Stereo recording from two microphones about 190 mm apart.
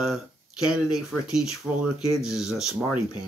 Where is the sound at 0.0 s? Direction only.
Centre (ahead or behind).